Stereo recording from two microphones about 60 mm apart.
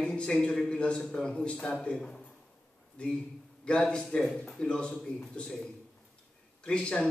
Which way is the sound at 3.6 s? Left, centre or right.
Centre.